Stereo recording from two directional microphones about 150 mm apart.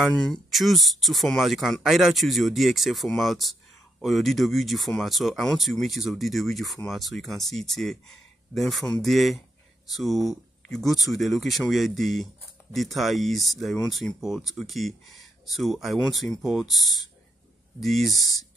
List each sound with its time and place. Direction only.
0.0 s speech: 5° left (ahead or behind)